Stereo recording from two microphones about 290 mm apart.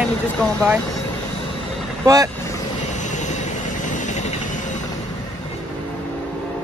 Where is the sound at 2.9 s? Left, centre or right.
Left.